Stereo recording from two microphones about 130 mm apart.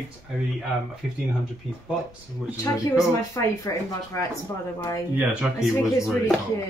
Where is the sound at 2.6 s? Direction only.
25° left (ahead or behind).